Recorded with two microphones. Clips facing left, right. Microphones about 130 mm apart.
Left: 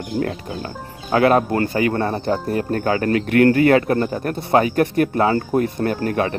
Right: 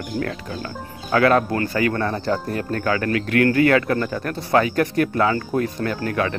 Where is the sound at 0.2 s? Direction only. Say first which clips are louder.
Left 4 dB; 30° left (ahead or behind).